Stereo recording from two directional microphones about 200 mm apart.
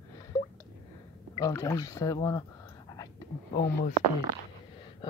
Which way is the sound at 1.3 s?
15° left (ahead or behind).